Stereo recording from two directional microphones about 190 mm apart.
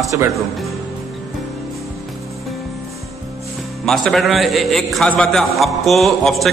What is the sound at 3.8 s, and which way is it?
A man's voice, centre (ahead or behind).